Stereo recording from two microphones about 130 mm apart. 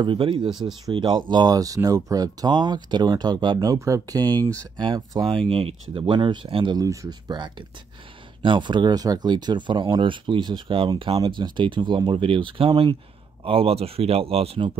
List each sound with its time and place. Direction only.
0.0 s speech: 40° right (ahead or behind)
0.5 s speech: 5° right (ahead or behind)
0.8 s speech: 35° right (ahead or behind)
4.4 s speech: 10° left (ahead or behind)
4.7 s speech: 35° right (ahead or behind); by 14.7 s 50° right (ahead or behind)